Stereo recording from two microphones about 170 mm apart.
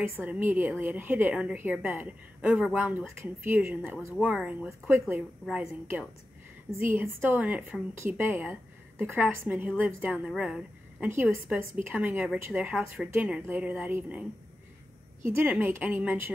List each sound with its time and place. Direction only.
0.2 s a woman's voice: 10° right (ahead or behind)
6.9 s a woman's voice: 10° right (ahead or behind)
15.2 s a woman's voice: 15° right (ahead or behind)